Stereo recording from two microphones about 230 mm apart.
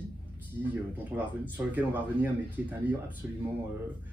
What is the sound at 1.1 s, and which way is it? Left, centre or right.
Speech, centre.